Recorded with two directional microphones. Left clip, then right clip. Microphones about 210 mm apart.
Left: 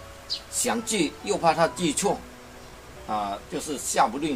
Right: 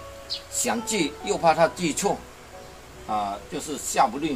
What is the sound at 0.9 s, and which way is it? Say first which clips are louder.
Speech: even; 15° right (ahead or behind).